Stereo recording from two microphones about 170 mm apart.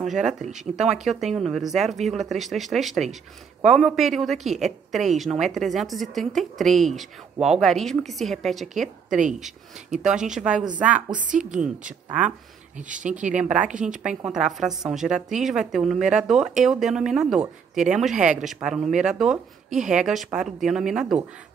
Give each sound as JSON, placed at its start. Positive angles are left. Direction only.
{"t": 0.0, "sound": "a woman's voice", "side_deg": 0}
{"t": 10.0, "sound": "a woman's voice", "side_deg": -5}
{"t": 11.1, "sound": "speech", "side_deg": -50}
{"t": 12.1, "sound": "speech", "side_deg": -10}
{"t": 12.7, "sound": "speech", "side_deg": -50}
{"t": 13.4, "sound": "a woman's voice", "side_deg": -5}